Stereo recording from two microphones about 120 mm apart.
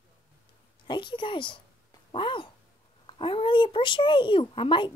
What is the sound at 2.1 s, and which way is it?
Cat, 45° left (ahead or behind).